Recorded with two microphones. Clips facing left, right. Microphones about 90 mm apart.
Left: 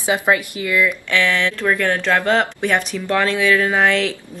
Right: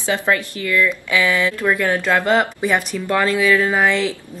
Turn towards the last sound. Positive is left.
turn(degrees=0)  # may be behind; listen again after turning